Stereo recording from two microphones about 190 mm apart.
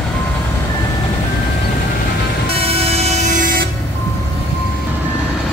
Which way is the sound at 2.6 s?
30° right (ahead or behind).